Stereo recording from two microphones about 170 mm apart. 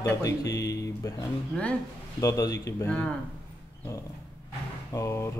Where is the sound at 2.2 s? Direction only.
20° left (ahead or behind).